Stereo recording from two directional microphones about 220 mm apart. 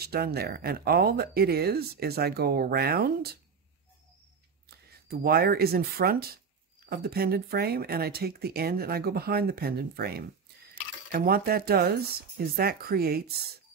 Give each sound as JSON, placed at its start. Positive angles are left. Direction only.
{"t": 0.0, "sound": "speech", "side_deg": -45}
{"t": 4.6, "sound": "speech", "side_deg": -45}